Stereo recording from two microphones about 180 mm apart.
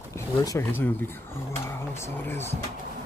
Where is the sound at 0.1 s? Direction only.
20° left (ahead or behind).